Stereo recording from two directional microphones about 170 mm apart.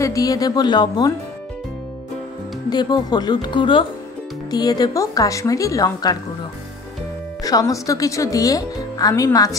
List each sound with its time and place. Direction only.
0.0 s speech: 20° left (ahead or behind)
2.7 s speech: 25° left (ahead or behind)
7.4 s speech: 20° left (ahead or behind)